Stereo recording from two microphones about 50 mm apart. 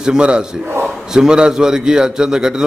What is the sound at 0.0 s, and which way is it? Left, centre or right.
A man's voice, centre.